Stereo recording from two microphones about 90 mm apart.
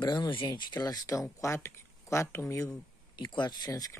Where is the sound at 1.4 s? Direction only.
35° left (ahead or behind).